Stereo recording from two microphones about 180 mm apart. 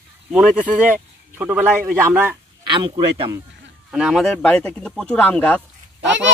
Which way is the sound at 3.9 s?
Centre (ahead or behind).